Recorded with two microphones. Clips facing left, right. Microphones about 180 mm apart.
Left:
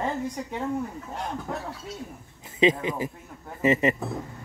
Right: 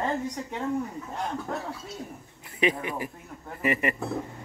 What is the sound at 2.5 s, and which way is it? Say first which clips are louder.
Speech: left 5 dB; 20° left (ahead or behind).